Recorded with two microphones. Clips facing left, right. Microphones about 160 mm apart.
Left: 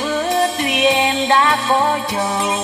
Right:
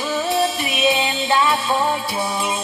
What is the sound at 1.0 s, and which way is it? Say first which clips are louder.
Music: left 4 dB; 65° left (ahead or behind).